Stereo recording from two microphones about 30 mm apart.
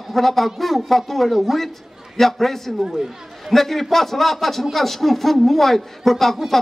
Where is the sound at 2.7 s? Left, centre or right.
Right.